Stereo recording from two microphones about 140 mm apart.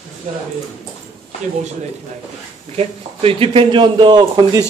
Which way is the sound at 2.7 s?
45° right (ahead or behind).